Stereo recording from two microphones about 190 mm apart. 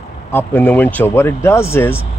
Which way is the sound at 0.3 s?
10° left (ahead or behind).